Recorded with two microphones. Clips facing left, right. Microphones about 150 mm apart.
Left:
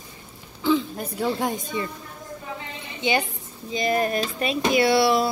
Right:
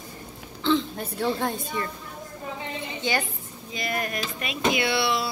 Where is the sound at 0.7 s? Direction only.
5° left (ahead or behind).